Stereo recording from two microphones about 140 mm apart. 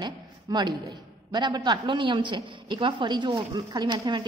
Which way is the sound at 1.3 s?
30° right (ahead or behind).